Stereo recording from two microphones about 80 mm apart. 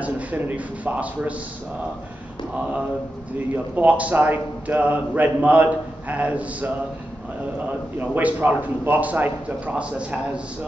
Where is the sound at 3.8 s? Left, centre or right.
Centre.